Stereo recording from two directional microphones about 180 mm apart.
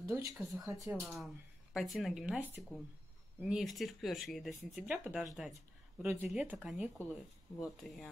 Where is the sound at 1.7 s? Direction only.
Centre (ahead or behind).